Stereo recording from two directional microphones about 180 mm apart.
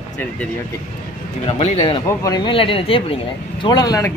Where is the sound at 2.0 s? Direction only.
20° left (ahead or behind).